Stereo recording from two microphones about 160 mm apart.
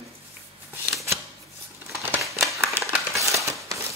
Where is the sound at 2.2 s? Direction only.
Centre (ahead or behind).